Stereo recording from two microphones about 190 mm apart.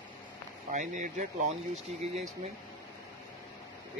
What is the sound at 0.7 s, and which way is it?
Speech, 40° right (ahead or behind).